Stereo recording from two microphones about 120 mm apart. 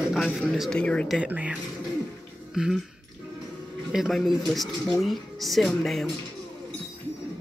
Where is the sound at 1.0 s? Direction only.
10° right (ahead or behind).